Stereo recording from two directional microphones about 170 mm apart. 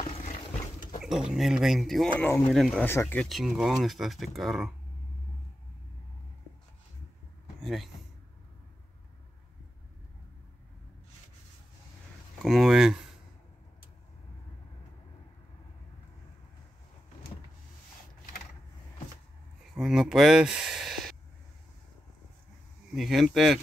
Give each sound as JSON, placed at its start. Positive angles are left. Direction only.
{"t": 1.0, "sound": "speech", "side_deg": -5}
{"t": 3.3, "sound": "speech", "side_deg": 0}
{"t": 7.6, "sound": "speech", "side_deg": 0}
{"t": 12.4, "sound": "speech", "side_deg": 0}
{"t": 19.7, "sound": "speech", "side_deg": 0}
{"t": 22.9, "sound": "speech", "side_deg": 0}